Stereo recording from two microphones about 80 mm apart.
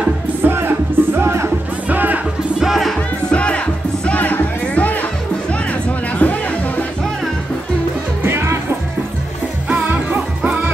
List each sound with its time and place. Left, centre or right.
0.4 s music: right
1.9 s music: right
2.6 s music: centre
3.3 s music: centre
8.2 s music: right
9.7 s music: centre